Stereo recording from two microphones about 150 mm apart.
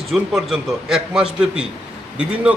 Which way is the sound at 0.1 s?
Centre (ahead or behind).